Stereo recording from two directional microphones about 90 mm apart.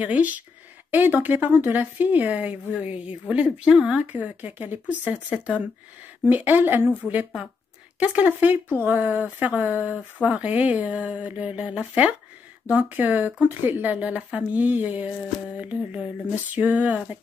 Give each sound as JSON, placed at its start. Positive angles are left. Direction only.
{"t": 0.0, "sound": "speech", "side_deg": -15}
{"t": 4.0, "sound": "speech", "side_deg": -15}
{"t": 8.0, "sound": "speech", "side_deg": -15}
{"t": 16.5, "sound": "speech", "side_deg": -15}